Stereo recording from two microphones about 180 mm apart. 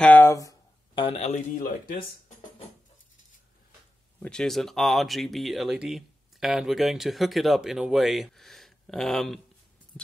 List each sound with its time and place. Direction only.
0.0 s speech: 10° left (ahead or behind); by 2.0 s 45° left (ahead or behind)
4.2 s speech: 5° left (ahead or behind)
9.9 s music: 5° left (ahead or behind)